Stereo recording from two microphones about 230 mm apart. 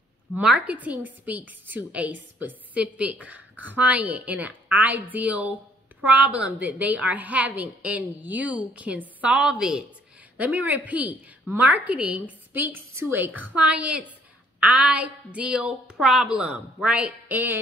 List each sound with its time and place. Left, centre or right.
0.3 s a woman's voice: centre